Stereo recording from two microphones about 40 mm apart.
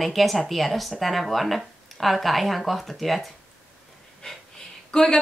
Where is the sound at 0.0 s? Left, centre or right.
Centre.